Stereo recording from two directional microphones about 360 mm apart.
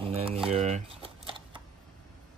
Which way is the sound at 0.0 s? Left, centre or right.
Centre.